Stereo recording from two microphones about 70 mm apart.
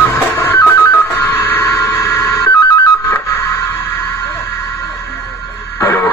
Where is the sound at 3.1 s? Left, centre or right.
Left.